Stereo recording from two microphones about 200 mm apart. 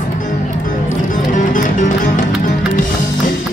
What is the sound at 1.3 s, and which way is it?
Music, 40° left (ahead or behind).